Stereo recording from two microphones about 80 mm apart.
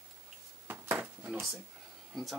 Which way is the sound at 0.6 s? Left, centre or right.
Right.